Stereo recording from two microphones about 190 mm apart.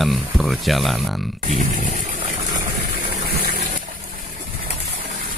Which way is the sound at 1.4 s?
35° right (ahead or behind).